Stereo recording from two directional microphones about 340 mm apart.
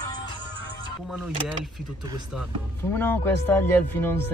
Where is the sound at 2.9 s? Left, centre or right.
Centre.